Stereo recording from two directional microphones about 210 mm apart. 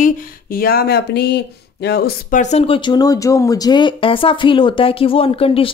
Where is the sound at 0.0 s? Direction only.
45° left (ahead or behind).